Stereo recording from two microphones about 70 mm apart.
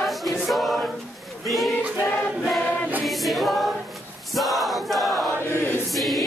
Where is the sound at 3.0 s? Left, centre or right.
Centre.